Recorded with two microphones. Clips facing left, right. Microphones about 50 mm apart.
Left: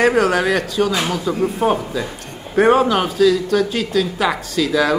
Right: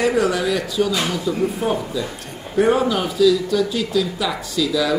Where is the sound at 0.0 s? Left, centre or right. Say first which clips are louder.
Left 3 dB; left.